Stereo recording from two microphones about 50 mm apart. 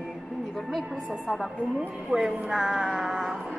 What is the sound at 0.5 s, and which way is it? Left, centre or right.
Speech, centre.